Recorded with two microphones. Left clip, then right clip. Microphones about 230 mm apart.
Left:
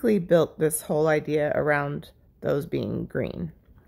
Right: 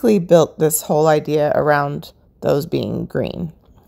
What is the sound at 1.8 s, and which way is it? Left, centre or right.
Speech, centre.